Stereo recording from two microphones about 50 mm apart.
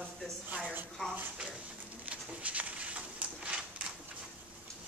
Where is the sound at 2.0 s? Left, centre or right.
Right.